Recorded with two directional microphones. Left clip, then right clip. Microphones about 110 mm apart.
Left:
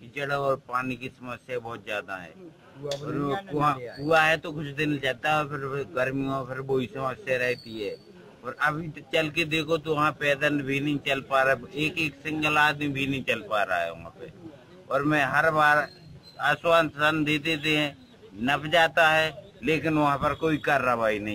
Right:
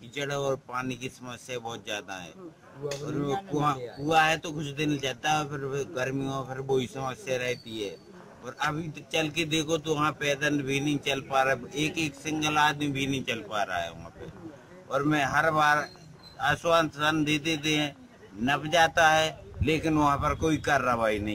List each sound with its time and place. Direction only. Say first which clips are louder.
0.1 s a man's voice: left 3 dB; 35° right (ahead or behind)
4.0 s a man's voice: left 2 dB; 35° right (ahead or behind)